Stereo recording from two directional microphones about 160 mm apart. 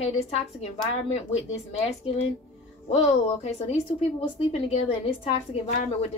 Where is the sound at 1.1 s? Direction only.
40° left (ahead or behind).